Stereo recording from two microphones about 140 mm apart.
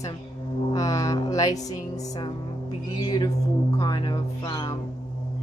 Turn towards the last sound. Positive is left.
turn(degrees=25)  # may be behind; listen again after turning